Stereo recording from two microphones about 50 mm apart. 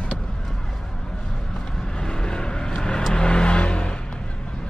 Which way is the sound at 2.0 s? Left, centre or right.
Centre.